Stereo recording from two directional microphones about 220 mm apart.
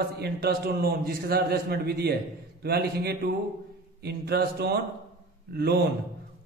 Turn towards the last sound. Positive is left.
turn(degrees=-45)  # may be behind; listen again after turning